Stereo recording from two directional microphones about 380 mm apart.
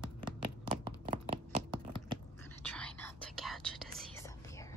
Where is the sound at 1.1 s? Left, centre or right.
Centre.